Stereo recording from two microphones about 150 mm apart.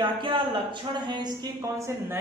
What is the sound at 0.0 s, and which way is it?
Speech, 35° right (ahead or behind).